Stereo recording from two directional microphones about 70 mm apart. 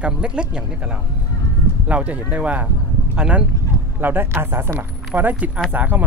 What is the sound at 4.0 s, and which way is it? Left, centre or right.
Speech, right.